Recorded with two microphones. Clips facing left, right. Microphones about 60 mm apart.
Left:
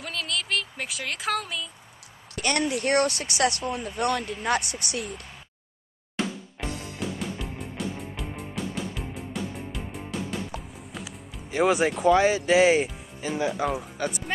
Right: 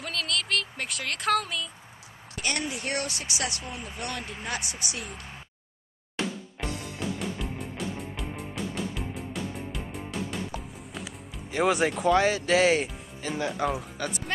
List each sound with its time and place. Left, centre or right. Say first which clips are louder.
0.0 s a sound: even; centre
2.3 s speech: left 5 dB; left
6.1 s music: left 2 dB; centre
13.9 s speech: left 3 dB; centre